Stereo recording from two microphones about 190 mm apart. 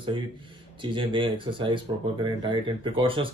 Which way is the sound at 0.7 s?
25° right (ahead or behind).